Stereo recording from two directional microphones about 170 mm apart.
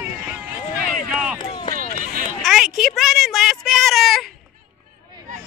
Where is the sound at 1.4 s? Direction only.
30° left (ahead or behind).